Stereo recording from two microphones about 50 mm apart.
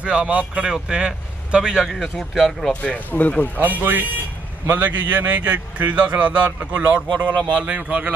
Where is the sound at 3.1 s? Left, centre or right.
Left.